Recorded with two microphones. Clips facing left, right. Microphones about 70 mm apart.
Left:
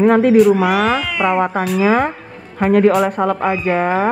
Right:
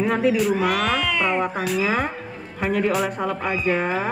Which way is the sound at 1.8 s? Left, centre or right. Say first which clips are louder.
Left 10 dB; left.